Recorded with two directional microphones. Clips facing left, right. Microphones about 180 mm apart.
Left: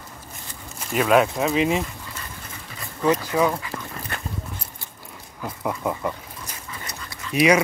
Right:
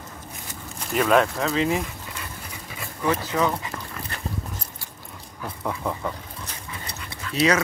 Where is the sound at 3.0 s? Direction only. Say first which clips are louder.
Left 3 dB; 15° left (ahead or behind).